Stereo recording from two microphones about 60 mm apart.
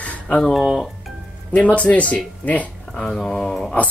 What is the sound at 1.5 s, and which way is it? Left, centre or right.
Speech, left.